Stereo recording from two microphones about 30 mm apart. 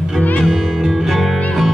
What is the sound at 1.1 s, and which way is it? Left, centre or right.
Music, centre.